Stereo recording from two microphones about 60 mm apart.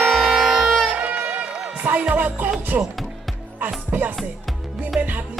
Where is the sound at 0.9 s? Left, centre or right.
Right.